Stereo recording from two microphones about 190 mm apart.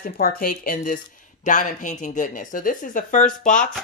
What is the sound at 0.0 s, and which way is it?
Speech, 50° left (ahead or behind).